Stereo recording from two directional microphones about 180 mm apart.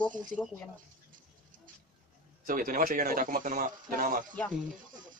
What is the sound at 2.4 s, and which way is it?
A man's voice, 50° right (ahead or behind).